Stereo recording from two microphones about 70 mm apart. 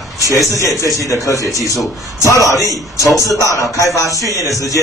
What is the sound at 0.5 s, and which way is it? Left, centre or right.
A man's voice, left.